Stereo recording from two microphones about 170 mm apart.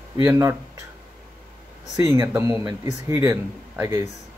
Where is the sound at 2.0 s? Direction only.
15° right (ahead or behind).